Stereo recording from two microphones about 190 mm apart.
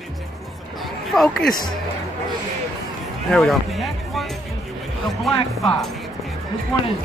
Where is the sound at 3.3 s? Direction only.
Centre (ahead or behind).